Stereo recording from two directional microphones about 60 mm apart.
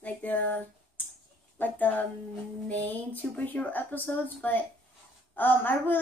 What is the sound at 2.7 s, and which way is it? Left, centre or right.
A woman's voice, left.